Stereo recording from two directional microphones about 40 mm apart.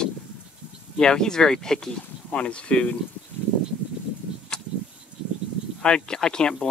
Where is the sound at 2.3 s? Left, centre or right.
Left.